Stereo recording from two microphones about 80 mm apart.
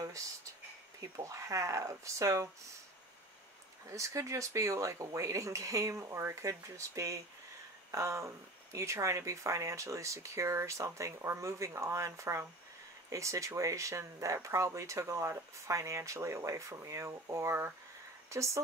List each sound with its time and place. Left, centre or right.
1.2 s speech: right
3.9 s speech: right